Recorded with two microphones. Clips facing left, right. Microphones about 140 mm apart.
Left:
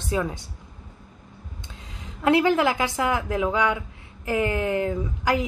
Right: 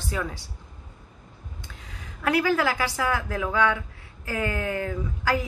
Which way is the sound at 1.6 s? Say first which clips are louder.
Left 2 dB; 20° left (ahead or behind).